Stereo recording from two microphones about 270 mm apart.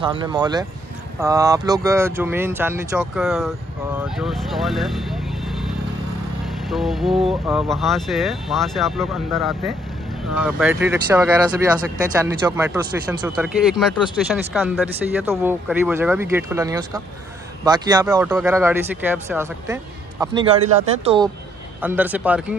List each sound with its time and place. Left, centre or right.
0.0 s speech: centre
6.7 s speech: centre
20.6 s speech: right
21.8 s speech: centre